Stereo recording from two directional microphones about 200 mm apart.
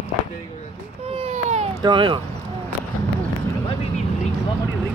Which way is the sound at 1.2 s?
35° right (ahead or behind).